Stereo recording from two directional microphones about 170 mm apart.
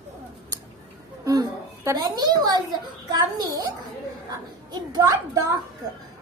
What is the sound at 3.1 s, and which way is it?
Speech, 20° right (ahead or behind).